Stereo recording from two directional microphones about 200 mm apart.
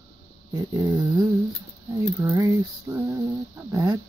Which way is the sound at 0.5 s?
20° right (ahead or behind).